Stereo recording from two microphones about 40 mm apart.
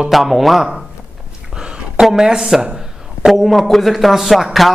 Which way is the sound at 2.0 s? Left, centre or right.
Centre.